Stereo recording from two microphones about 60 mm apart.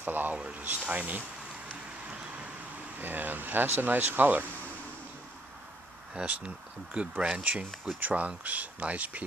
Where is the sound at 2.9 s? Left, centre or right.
Right.